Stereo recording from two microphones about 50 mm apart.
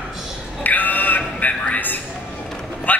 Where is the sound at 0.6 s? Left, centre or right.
Left.